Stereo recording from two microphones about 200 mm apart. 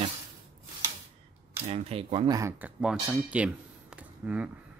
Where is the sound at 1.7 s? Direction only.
30° right (ahead or behind).